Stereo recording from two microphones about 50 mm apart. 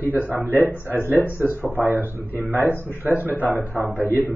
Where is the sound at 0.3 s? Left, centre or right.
Right.